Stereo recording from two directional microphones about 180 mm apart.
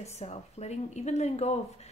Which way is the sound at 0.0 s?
35° left (ahead or behind).